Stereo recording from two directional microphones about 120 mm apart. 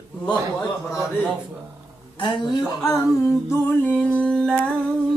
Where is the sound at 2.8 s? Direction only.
20° left (ahead or behind).